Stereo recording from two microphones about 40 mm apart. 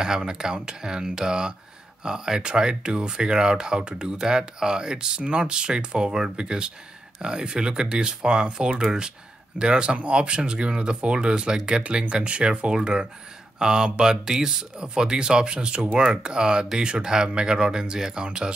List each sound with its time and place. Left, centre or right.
0.0 s speech: centre